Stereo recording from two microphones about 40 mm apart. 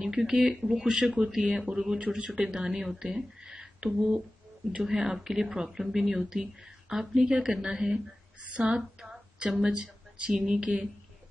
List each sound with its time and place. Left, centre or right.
0.0 s speech: centre
2.0 s a man's voice: right
2.3 s speech: centre